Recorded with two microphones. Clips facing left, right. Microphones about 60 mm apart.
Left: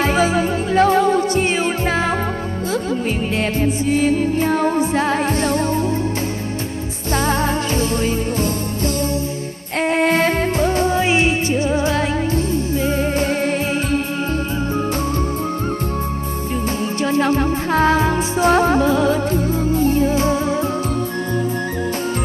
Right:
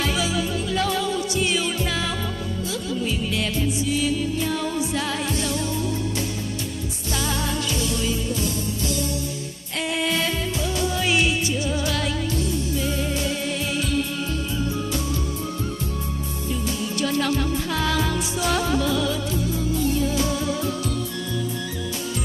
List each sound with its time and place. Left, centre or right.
0.0 s music: left
3.3 s music: left
9.8 s music: left
17.0 s music: left